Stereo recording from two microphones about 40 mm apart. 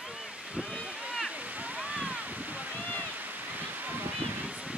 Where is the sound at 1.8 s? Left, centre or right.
Right.